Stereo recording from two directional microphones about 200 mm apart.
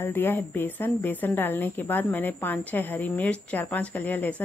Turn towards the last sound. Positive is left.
turn(degrees=10)  # may be behind; listen again after turning